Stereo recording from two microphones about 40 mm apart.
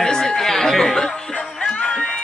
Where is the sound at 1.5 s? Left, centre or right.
Centre.